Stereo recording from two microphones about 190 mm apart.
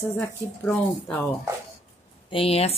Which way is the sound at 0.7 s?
5° left (ahead or behind).